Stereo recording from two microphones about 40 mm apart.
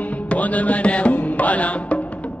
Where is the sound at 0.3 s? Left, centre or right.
Left.